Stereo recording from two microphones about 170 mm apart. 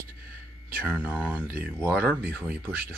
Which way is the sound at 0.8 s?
10° right (ahead or behind).